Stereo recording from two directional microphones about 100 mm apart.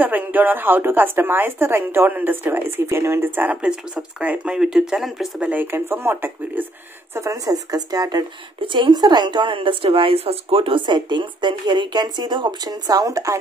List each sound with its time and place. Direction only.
0.0 s speech: 15° right (ahead or behind)
5.4 s speech: 15° right (ahead or behind)
7.2 s speech: 35° right (ahead or behind)
8.6 s a woman's voice: 50° right (ahead or behind); by 13.4 s 35° right (ahead or behind)